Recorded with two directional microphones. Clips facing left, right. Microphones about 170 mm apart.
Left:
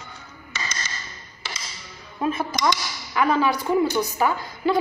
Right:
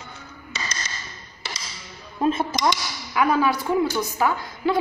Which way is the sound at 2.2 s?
30° right (ahead or behind).